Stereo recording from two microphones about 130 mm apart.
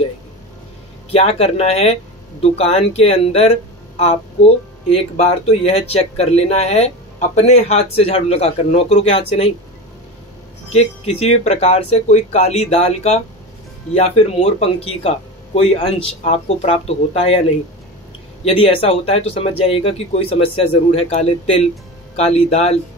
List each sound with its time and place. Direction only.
1.1 s speech: 50° left (ahead or behind)
10.7 s speech: 55° left (ahead or behind)
18.4 s speech: 50° left (ahead or behind)